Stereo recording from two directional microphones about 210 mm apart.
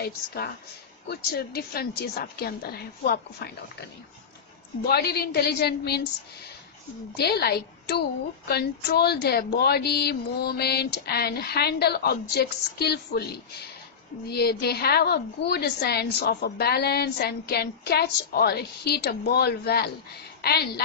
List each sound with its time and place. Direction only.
0.0 s a woman's voice: 50° left (ahead or behind)
4.8 s a woman's voice: 50° left (ahead or behind)
7.2 s a woman's voice: 50° left (ahead or behind)